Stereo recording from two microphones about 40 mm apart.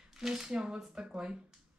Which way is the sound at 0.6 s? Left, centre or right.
Centre.